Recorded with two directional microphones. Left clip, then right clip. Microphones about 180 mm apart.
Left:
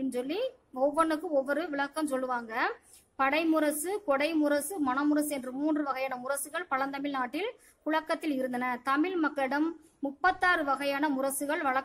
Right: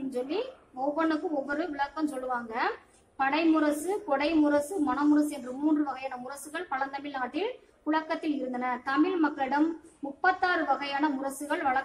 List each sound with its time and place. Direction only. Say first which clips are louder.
0.1 s a woman's voice: even; 40° left (ahead or behind)